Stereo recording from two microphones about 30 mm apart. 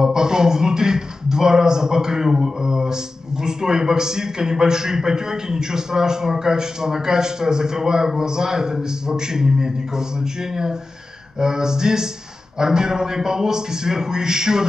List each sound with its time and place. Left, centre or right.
0.0 s a man's voice: right